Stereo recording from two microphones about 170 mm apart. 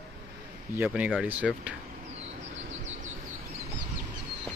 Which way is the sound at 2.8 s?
45° right (ahead or behind).